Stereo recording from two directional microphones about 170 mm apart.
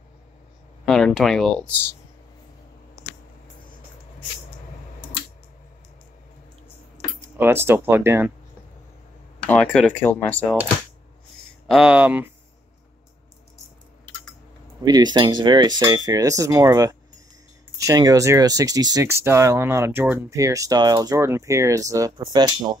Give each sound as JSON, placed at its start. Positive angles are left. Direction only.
{"t": 0.8, "sound": "speech", "side_deg": 0}
{"t": 7.3, "sound": "speech", "side_deg": -15}
{"t": 9.5, "sound": "speech", "side_deg": 5}
{"t": 11.6, "sound": "speech", "side_deg": -5}
{"t": 14.8, "sound": "speech", "side_deg": -25}